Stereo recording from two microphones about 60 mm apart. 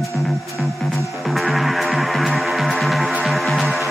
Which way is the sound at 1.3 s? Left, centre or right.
Centre.